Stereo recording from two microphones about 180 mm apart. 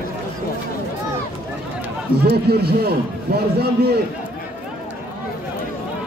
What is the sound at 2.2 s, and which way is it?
A man's voice, 60° right (ahead or behind).